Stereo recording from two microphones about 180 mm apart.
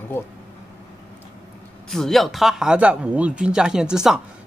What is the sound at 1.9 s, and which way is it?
Speech, centre (ahead or behind).